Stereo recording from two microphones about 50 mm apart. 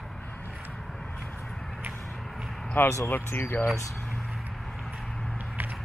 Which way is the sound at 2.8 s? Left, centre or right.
Left.